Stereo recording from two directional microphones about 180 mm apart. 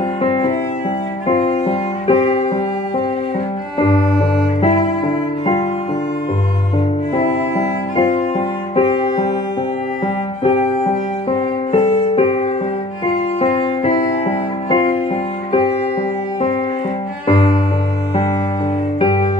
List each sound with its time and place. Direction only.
0.2 s music: 25° left (ahead or behind)
3.8 s music: 30° left (ahead or behind)
7.9 s music: 30° left (ahead or behind)
10.4 s music: 35° left (ahead or behind)
17.3 s music: 30° left (ahead or behind)
18.9 s music: 30° left (ahead or behind)